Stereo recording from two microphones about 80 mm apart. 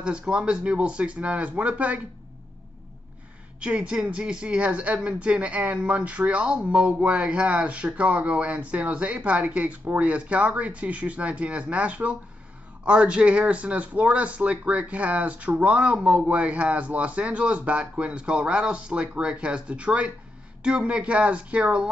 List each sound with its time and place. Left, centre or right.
0.0 s speech: centre
3.6 s speech: centre